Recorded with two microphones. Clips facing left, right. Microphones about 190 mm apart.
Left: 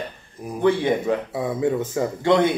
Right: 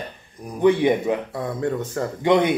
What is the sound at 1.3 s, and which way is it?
Speech, 5° left (ahead or behind).